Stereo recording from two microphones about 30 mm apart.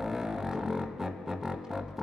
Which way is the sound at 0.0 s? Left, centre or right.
Centre.